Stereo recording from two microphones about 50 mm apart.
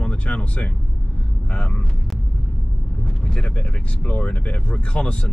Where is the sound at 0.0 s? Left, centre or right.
Left.